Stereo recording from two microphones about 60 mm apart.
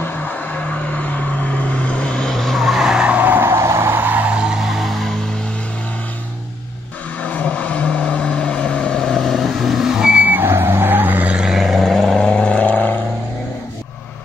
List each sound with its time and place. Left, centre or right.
0.0 s vehicle: left; by 3.3 s right
3.3 s vehicle: right
4.0 s vehicle: right
4.7 s mains hum: centre
7.2 s vehicle: left; by 10.1 s centre
10.1 s vehicle: right
11.3 s vehicle: centre; by 12.9 s left